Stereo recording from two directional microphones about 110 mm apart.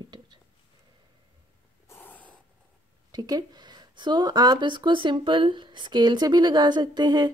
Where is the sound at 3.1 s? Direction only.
40° right (ahead or behind).